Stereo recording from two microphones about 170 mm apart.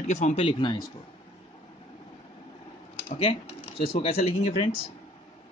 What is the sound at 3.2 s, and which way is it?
Speech, 35° left (ahead or behind).